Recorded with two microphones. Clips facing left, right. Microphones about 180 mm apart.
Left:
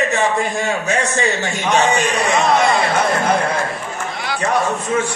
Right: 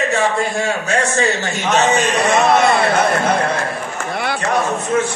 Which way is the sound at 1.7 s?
15° left (ahead or behind).